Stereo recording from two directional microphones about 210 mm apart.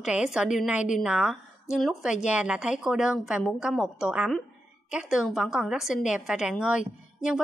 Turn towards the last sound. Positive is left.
turn(degrees=-5)  # may be behind; listen again after turning